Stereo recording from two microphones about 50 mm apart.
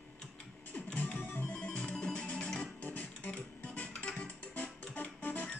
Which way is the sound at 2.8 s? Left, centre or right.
Left.